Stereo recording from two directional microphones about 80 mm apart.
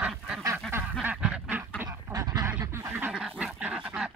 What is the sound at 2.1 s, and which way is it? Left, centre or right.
Duck, right.